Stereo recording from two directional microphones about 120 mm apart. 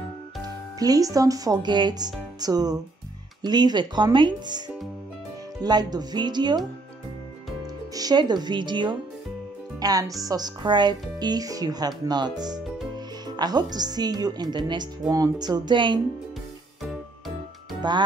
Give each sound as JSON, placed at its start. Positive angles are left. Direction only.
{"t": 0.4, "sound": "speech", "side_deg": -30}
{"t": 7.9, "sound": "speech", "side_deg": -35}
{"t": 12.5, "sound": "music", "side_deg": -5}
{"t": 13.4, "sound": "speech", "side_deg": -35}
{"t": 17.8, "sound": "speech", "side_deg": -35}